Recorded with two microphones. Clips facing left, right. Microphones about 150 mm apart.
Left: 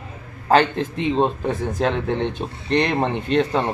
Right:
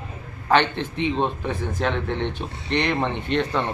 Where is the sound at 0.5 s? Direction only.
40° left (ahead or behind).